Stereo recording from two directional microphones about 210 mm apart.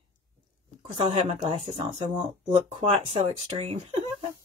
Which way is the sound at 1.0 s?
30° right (ahead or behind).